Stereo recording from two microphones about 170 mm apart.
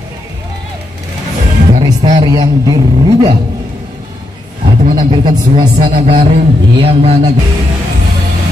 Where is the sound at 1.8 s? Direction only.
25° right (ahead or behind).